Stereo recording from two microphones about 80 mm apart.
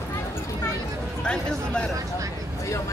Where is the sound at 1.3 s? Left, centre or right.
Centre.